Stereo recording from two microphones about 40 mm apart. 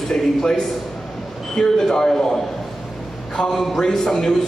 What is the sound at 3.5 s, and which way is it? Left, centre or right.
Speech, centre.